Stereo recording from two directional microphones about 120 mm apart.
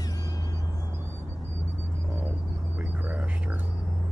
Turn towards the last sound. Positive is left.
turn(degrees=-15)  # may be behind; listen again after turning